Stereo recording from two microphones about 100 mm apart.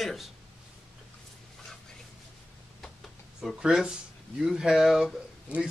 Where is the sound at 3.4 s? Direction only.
5° right (ahead or behind).